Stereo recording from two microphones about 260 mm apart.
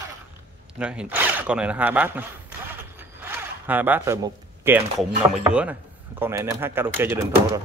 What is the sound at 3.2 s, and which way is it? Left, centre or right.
Speech, centre.